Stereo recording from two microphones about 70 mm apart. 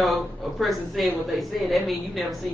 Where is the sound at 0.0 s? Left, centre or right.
Centre.